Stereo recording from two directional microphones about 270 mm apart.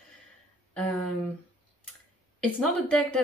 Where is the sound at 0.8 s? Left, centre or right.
Centre.